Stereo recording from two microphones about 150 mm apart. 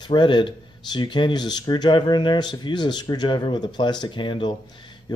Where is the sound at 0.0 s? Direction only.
30° left (ahead or behind).